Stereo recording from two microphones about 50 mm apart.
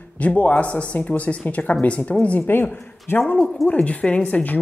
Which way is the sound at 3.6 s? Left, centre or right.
Left.